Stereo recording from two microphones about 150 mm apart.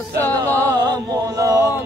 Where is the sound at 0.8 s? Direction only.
25° right (ahead or behind).